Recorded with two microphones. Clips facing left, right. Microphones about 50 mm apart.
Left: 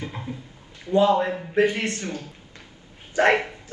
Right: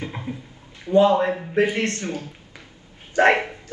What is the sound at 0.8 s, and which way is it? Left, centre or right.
Speech, right.